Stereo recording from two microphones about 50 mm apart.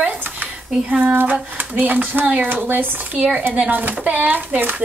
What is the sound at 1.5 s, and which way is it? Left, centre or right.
Speech, right.